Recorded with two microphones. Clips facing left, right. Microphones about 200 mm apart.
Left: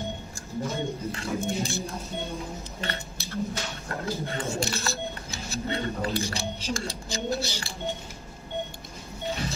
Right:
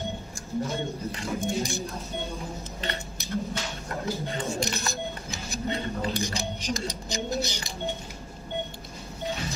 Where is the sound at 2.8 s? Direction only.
15° right (ahead or behind).